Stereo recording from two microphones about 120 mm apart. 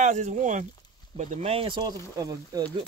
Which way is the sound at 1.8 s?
30° right (ahead or behind).